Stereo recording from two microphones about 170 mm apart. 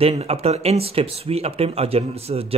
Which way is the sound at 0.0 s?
35° right (ahead or behind).